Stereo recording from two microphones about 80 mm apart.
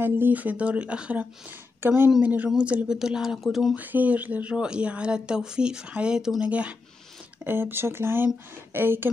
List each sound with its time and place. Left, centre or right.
0.0 s speech: right
1.8 s speech: right; by 3.3 s centre
3.7 s speech: right
7.4 s speech: right